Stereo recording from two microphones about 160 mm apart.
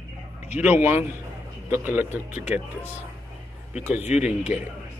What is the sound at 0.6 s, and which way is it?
Speech, 10° right (ahead or behind).